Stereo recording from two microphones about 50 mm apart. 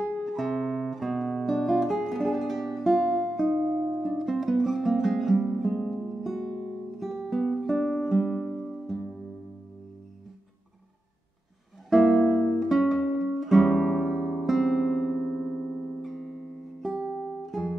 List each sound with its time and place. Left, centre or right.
0.2 s guitar: centre
4.0 s music: centre
11.9 s music: centre
12.2 s music: centre
12.5 s music: centre
15.0 s keyboard: centre
15.5 s music: centre
16.9 s guitar: right
17.2 s music: centre